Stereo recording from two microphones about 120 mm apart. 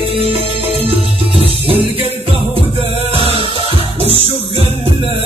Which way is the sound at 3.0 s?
50° right (ahead or behind).